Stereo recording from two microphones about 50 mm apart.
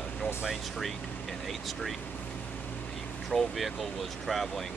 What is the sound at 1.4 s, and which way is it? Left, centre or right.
Speech, centre.